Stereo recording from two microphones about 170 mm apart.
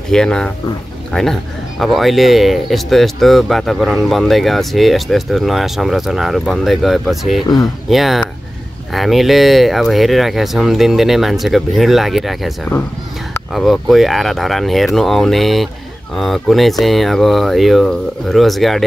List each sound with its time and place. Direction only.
0.1 s speech: 5° left (ahead or behind)
7.4 s speech: 20° left (ahead or behind)
7.9 s speech: centre (ahead or behind)